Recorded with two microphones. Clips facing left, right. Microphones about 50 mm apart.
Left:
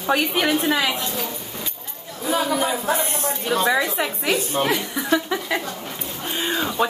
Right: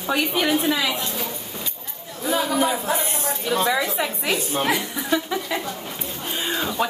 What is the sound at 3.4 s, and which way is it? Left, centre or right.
Speech, centre.